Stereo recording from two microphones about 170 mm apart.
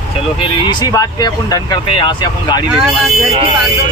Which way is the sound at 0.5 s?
25° left (ahead or behind).